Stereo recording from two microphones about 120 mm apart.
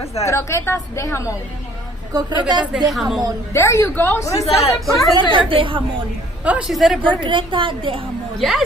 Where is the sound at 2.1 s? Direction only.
30° right (ahead or behind).